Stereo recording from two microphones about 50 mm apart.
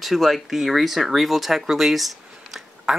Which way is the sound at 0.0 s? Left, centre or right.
Centre.